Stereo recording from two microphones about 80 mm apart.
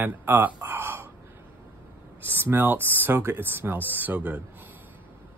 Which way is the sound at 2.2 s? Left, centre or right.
Right.